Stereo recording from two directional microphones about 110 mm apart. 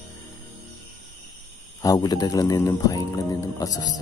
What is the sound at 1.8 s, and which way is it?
Speech, 35° left (ahead or behind).